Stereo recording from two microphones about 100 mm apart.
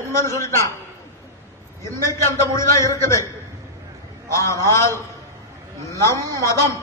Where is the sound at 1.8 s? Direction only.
30° left (ahead or behind).